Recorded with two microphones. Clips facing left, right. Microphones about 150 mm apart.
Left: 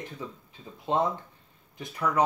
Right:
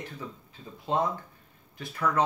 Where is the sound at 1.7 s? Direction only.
15° left (ahead or behind).